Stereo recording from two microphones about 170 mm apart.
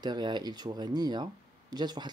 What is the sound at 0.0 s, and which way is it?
Speech, 25° right (ahead or behind).